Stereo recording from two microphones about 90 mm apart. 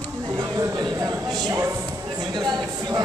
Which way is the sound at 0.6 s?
45° right (ahead or behind).